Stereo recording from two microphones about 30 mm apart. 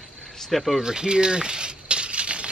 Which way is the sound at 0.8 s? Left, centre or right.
Right.